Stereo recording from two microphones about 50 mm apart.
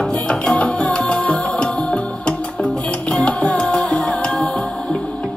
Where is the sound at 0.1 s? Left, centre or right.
Left.